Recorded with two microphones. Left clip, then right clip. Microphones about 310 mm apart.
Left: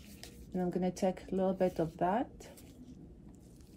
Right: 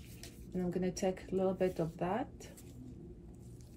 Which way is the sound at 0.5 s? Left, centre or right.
Left.